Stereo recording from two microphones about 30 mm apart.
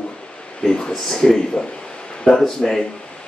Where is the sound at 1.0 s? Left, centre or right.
Centre.